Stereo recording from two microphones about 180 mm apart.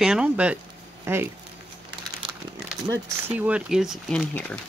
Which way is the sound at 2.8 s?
10° right (ahead or behind).